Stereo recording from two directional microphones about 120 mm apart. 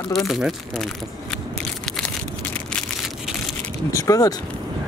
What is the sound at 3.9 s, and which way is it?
Speech, 30° left (ahead or behind).